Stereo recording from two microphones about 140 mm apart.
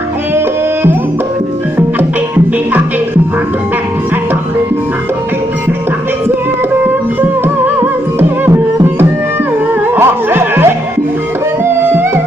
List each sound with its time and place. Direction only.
1.8 s music: 15° right (ahead or behind)
6.8 s music: 15° right (ahead or behind)
9.9 s music: 15° right (ahead or behind)